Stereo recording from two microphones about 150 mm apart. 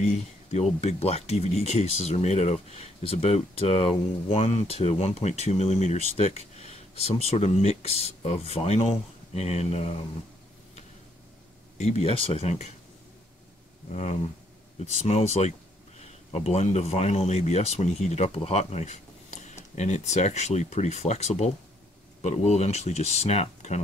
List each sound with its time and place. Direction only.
0.0 s speech: 50° left (ahead or behind)
11.8 s speech: 40° left (ahead or behind)
13.9 s speech: 45° left (ahead or behind)